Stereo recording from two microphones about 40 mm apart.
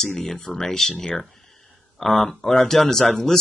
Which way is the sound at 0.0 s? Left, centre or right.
Centre.